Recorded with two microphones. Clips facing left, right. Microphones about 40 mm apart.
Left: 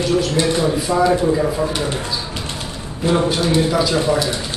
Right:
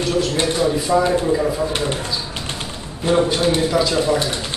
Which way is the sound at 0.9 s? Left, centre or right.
Centre.